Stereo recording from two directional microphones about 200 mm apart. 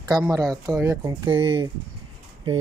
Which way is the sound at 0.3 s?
20° right (ahead or behind).